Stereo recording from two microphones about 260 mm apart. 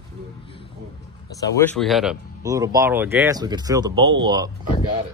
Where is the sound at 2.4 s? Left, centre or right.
Centre.